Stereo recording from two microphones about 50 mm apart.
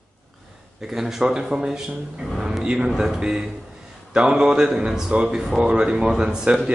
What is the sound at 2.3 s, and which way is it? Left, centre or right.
Speech, centre.